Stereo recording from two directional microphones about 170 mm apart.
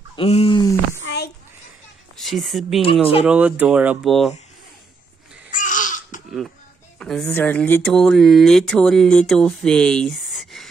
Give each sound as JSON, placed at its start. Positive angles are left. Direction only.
{"t": 0.1, "sound": "a sound", "side_deg": 35}
{"t": 2.1, "sound": "speech", "side_deg": 0}
{"t": 2.8, "sound": "speech", "side_deg": 35}
{"t": 3.3, "sound": "speech", "side_deg": -10}
{"t": 5.5, "sound": "babbling", "side_deg": 50}
{"t": 7.0, "sound": "speech", "side_deg": 5}